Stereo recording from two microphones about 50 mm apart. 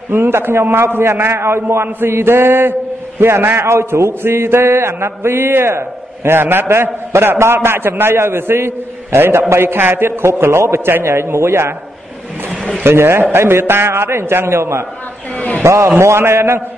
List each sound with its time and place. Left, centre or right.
0.1 s a man's voice: right
12.8 s a man's voice: right
15.3 s a man's voice: left
15.6 s a man's voice: right
16.0 s a man's voice: right